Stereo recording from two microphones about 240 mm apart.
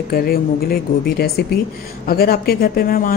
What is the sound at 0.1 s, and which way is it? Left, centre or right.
Speech, left.